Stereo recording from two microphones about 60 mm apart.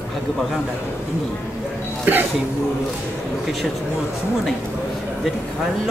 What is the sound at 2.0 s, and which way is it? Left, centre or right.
Speech, right.